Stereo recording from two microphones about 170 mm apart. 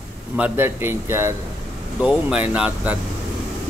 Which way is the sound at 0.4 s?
15° right (ahead or behind).